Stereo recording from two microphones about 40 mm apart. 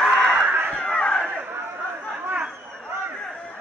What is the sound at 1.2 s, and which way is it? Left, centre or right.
Chatter, right.